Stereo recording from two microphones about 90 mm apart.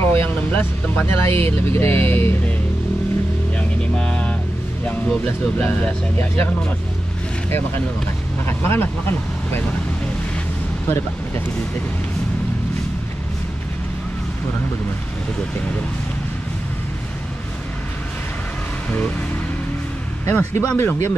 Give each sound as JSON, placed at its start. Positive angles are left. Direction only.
{"t": 0.0, "sound": "speech", "side_deg": 25}
{"t": 3.5, "sound": "vehicle", "side_deg": 10}
{"t": 4.8, "sound": "speech", "side_deg": 15}
{"t": 7.4, "sound": "speech", "side_deg": 25}
{"t": 20.2, "sound": "speech", "side_deg": 25}